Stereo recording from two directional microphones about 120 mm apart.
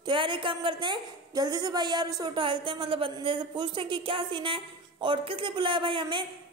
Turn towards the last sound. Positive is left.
turn(degrees=-40)  # may be behind; listen again after turning